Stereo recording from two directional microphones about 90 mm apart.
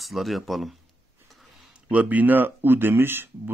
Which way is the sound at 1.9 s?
15° right (ahead or behind).